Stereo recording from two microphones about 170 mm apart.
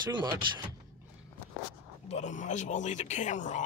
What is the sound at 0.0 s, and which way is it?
Speech, 25° right (ahead or behind).